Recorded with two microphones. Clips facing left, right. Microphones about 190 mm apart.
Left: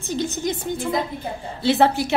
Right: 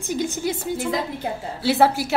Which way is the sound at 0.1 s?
10° right (ahead or behind).